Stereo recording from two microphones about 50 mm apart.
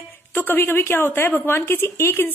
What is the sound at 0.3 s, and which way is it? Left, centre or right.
A woman's voice, left.